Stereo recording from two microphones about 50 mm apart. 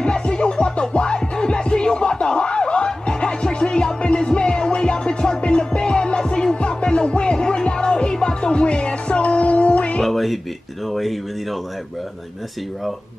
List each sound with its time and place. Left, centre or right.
0.0 s music: centre
10.0 s a sound: centre
10.9 s speech: centre